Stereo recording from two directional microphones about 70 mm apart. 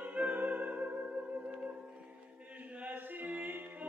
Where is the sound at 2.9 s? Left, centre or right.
Right.